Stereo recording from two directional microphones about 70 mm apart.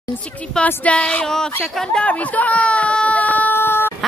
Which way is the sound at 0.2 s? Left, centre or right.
Centre.